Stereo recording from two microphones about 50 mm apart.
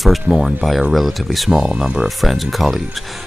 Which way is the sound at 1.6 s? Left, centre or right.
Centre.